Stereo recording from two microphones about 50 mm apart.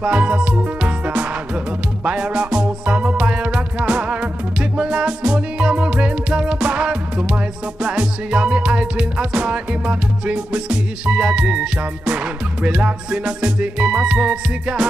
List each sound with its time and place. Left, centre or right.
0.0 s music: right